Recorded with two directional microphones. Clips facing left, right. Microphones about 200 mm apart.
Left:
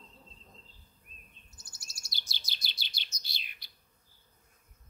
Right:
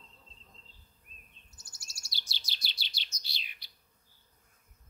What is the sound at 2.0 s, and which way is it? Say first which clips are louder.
Chirp: even; 50° left (ahead or behind).